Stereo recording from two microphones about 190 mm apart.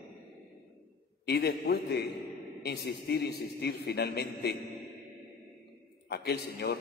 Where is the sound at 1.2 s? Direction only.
60° left (ahead or behind).